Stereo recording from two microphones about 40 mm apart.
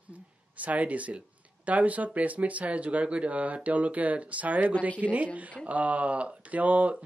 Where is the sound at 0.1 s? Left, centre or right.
Right.